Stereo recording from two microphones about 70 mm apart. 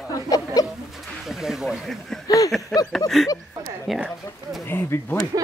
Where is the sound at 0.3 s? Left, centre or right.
Left.